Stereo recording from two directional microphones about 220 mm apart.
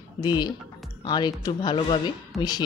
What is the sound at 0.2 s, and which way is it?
Speech, 20° left (ahead or behind).